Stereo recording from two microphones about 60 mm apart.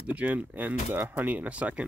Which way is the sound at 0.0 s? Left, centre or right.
Right.